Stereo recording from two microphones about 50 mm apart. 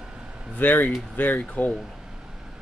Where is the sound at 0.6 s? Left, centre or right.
Left.